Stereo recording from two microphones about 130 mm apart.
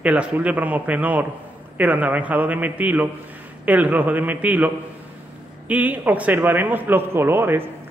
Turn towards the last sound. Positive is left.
turn(degrees=-15)  # may be behind; listen again after turning